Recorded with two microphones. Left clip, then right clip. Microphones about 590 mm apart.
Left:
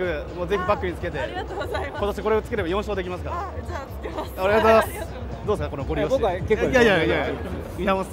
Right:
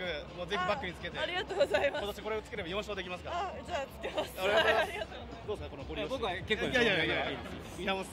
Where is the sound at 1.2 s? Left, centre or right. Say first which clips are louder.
Left 2 dB; right.